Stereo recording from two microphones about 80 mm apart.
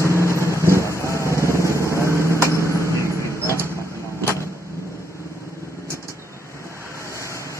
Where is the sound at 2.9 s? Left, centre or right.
Right.